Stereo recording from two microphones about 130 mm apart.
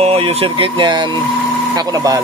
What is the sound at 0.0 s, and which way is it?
Speech, 50° right (ahead or behind).